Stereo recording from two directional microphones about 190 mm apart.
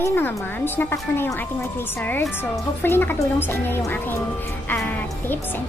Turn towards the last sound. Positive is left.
turn(degrees=10)  # may be behind; listen again after turning